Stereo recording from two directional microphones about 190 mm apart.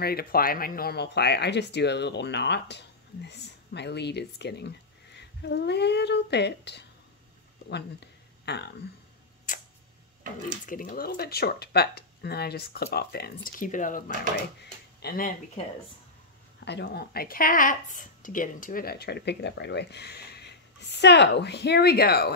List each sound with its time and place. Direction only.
0.0 s speech: 55° left (ahead or behind)
8.5 s speech: 60° left (ahead or behind)
9.5 s tick-tock: 45° left (ahead or behind)
10.7 s speech: 45° left (ahead or behind)
14.6 s speech: 55° left (ahead or behind)
16.5 s speech: 65° left (ahead or behind)